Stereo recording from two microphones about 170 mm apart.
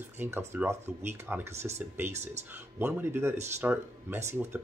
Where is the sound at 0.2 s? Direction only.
15° right (ahead or behind).